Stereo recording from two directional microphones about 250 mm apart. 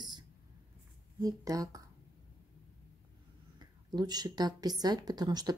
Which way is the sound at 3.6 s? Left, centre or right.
Centre.